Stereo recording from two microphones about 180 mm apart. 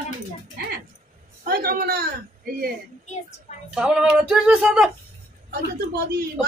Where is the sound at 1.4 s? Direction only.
55° right (ahead or behind).